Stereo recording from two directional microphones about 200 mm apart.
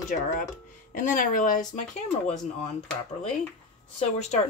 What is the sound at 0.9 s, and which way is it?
Speech, 40° left (ahead or behind).